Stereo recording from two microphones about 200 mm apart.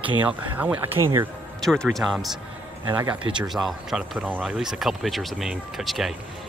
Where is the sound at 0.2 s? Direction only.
10° right (ahead or behind).